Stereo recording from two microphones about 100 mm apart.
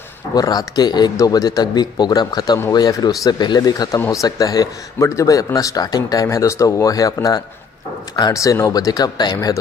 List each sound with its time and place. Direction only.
0.3 s speech: 40° left (ahead or behind)